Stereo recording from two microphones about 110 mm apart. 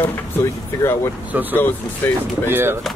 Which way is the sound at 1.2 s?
15° right (ahead or behind).